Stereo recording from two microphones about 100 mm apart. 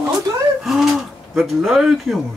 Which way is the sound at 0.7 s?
5° right (ahead or behind).